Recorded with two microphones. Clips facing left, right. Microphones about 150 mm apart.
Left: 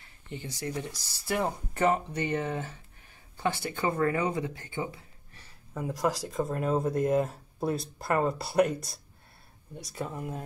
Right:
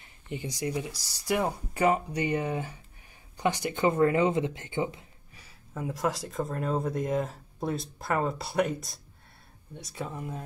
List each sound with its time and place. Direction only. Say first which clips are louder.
0.0 s speech: right 4 dB; 15° right (ahead or behind)
5.8 s speech: left 1 dB; centre (ahead or behind)